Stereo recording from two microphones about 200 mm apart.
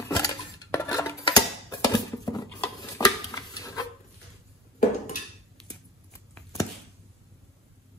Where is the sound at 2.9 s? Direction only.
15° left (ahead or behind).